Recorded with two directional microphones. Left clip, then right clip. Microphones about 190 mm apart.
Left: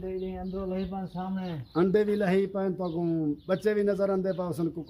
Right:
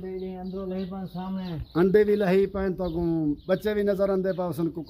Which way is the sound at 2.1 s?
20° right (ahead or behind).